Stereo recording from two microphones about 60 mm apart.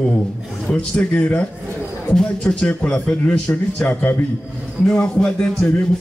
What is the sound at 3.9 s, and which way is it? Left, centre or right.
Speech, left.